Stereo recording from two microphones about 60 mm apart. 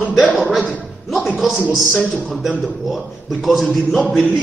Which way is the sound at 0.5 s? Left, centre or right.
Centre.